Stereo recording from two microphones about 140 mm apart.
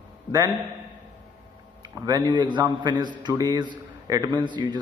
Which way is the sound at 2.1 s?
30° right (ahead or behind).